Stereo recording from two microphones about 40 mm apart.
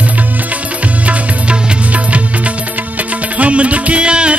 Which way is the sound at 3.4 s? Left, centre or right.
Right.